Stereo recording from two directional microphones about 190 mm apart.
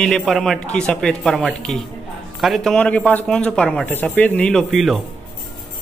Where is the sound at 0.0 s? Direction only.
Centre (ahead or behind).